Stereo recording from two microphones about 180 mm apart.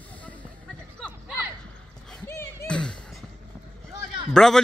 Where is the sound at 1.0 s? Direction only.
5° left (ahead or behind).